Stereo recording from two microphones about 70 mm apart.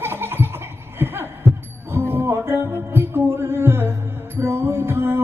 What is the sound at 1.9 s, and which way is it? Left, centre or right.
Music, right.